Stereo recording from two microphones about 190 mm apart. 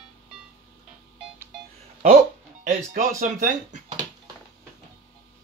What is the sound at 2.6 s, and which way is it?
Speech, 40° right (ahead or behind).